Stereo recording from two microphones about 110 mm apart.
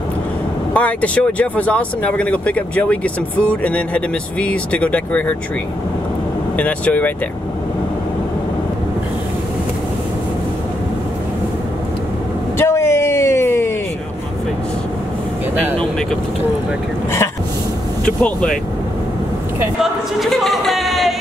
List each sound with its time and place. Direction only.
0.7 s speech: 10° left (ahead or behind)
6.5 s speech: 15° left (ahead or behind)
12.5 s a sound: 25° left (ahead or behind)
18.0 s speech: 10° left (ahead or behind)
19.8 s speech: centre (ahead or behind)